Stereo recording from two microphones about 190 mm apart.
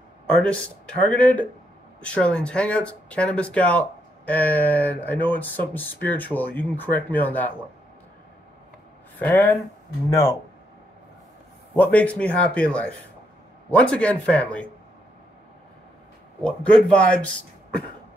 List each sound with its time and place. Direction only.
0.4 s speech: 5° left (ahead or behind)
9.2 s speech: 10° left (ahead or behind)
11.7 s speech: 10° left (ahead or behind)
16.4 s speech: 5° left (ahead or behind)